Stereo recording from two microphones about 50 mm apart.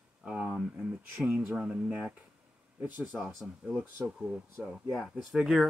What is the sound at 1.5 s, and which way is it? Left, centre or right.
Speech, centre.